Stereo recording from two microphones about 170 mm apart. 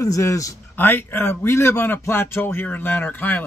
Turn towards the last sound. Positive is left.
turn(degrees=10)  # may be behind; listen again after turning